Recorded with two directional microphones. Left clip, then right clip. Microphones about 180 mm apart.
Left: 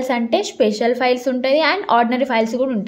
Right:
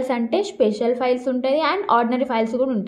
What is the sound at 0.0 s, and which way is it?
A woman's voice, 15° left (ahead or behind).